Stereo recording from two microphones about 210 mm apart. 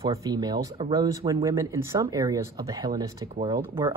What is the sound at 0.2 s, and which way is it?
Speech, 20° right (ahead or behind).